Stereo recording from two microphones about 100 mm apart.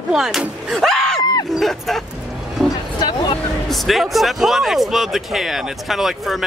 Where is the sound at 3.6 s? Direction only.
Centre (ahead or behind).